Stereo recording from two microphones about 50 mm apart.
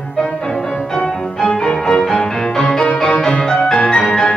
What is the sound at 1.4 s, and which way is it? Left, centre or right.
Music, centre.